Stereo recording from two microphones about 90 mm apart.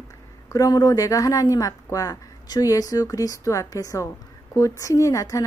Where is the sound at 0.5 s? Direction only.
45° left (ahead or behind).